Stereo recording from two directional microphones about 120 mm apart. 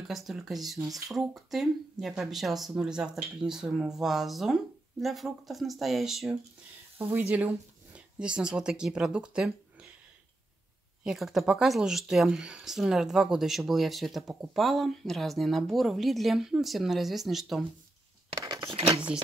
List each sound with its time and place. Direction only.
0.1 s speech: centre (ahead or behind)
7.0 s speech: 15° right (ahead or behind)
11.1 s speech: centre (ahead or behind)
18.3 s a sound: 30° right (ahead or behind)